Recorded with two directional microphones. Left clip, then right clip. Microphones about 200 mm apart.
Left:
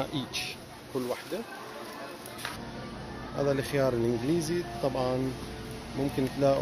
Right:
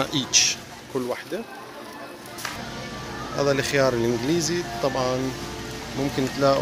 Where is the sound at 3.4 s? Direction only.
10° left (ahead or behind).